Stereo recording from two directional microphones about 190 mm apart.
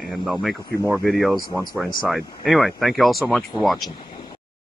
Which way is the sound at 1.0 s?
Centre (ahead or behind).